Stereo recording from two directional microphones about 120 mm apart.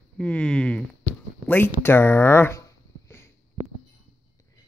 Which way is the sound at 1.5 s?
20° left (ahead or behind).